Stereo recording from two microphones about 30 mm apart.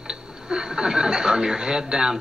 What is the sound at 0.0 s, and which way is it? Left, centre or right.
A man's voice, right.